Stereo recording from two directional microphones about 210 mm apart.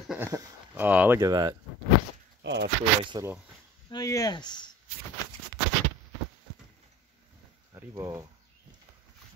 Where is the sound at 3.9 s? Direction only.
15° left (ahead or behind).